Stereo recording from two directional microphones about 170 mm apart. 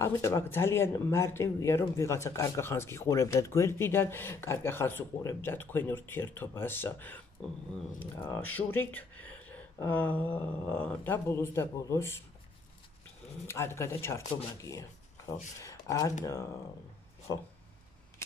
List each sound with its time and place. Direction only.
0.0 s speech: 15° left (ahead or behind)
13.5 s speech: 15° left (ahead or behind)
17.3 s speech: 20° left (ahead or behind)